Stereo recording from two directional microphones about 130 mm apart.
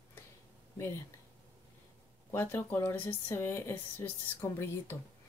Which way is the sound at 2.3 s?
15° left (ahead or behind).